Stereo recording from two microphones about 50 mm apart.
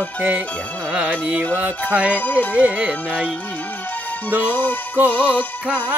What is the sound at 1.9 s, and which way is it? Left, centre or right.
Speech, right.